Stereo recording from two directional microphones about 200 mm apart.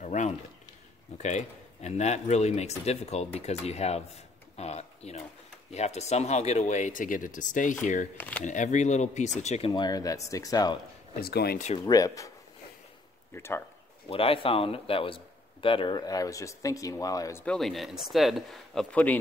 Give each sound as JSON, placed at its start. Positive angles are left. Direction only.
{"t": 0.0, "sound": "speech", "side_deg": 35}
{"t": 4.6, "sound": "a sound", "side_deg": 35}
{"t": 5.7, "sound": "speech", "side_deg": 35}
{"t": 8.2, "sound": "speech", "side_deg": 10}
{"t": 8.5, "sound": "speech", "side_deg": 40}
{"t": 9.7, "sound": "speech", "side_deg": 20}
{"t": 11.1, "sound": "speech", "side_deg": 50}
{"t": 11.8, "sound": "speech", "side_deg": 15}
{"t": 13.3, "sound": "speech", "side_deg": 10}
{"t": 14.0, "sound": "speech", "side_deg": 30}
{"t": 17.6, "sound": "speech", "side_deg": 0}